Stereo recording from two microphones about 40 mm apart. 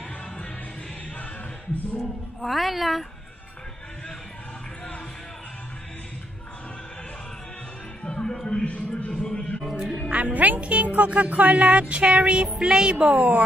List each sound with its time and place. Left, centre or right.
2.0 s a woman's voice: centre
8.0 s music: left
8.5 s speech: left
10.1 s speech: right
10.6 s music: right
12.5 s music: centre
13.0 s speech: right